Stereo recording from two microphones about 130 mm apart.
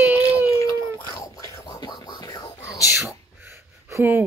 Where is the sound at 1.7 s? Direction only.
35° left (ahead or behind).